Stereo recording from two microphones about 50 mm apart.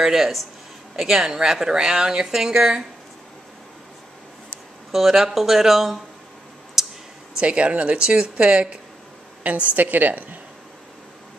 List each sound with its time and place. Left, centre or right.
0.0 s speech: centre
4.9 s speech: centre
6.8 s clicking: centre
7.3 s a woman's voice: right